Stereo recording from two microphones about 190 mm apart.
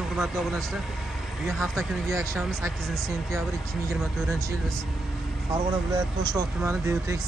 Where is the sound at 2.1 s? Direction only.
15° right (ahead or behind).